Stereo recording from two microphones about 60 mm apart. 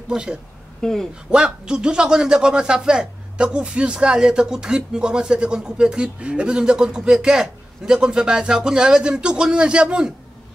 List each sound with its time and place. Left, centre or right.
0.1 s a man's voice: centre
0.7 s speech: centre
1.3 s a man's voice: centre